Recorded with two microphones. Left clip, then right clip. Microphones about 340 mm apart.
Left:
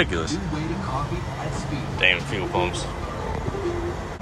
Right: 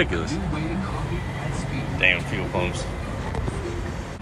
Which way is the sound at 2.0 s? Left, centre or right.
Centre.